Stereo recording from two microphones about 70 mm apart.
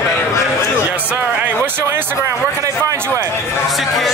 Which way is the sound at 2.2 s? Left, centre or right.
Right.